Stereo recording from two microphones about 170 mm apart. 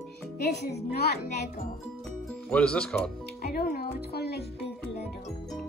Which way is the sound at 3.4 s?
60° left (ahead or behind).